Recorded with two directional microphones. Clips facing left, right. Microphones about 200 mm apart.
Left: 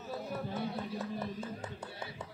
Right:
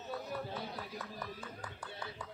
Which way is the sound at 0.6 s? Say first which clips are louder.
Left 6 dB; 25° left (ahead or behind).